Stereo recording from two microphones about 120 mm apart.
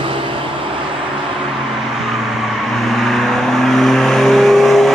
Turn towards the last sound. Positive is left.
turn(degrees=0)  # may be behind; listen again after turning